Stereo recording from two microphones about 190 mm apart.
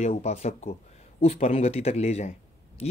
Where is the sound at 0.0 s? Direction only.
35° left (ahead or behind).